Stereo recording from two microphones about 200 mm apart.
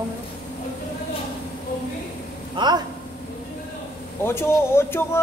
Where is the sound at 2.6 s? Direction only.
25° right (ahead or behind).